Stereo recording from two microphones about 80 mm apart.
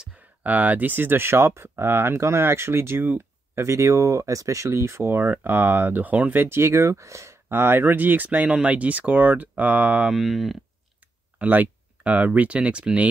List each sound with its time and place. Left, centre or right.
0.4 s speech: centre
3.5 s speech: right; by 10.1 s centre
10.1 s speech: centre
11.0 s speech: centre